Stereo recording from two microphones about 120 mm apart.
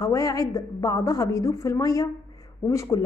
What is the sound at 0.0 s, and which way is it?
Speech, 30° left (ahead or behind).